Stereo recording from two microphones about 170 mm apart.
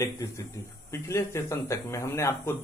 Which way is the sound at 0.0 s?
20° left (ahead or behind).